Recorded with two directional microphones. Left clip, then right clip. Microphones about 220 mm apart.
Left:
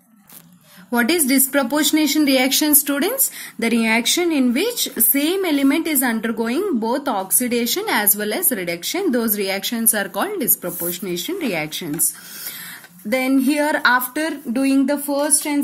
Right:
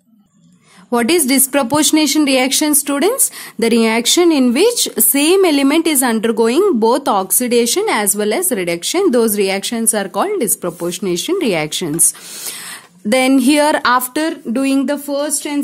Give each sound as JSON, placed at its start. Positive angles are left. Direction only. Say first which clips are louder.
{"t": 0.8, "sound": "speech", "louder": "right 4 dB", "side_deg": -45}
{"t": 13.1, "sound": "speech", "louder": "right 6 dB", "side_deg": -50}